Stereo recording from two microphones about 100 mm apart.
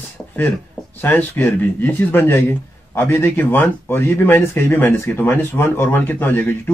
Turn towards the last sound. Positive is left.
turn(degrees=20)  # may be behind; listen again after turning